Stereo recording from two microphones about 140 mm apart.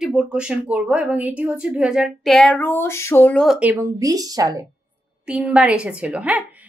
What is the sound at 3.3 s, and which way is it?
Speech, centre (ahead or behind).